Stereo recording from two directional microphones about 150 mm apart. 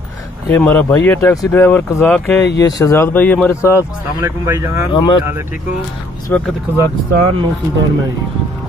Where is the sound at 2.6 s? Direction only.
25° left (ahead or behind).